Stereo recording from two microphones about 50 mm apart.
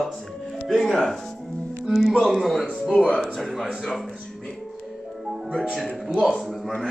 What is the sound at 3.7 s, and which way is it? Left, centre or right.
Speech, centre.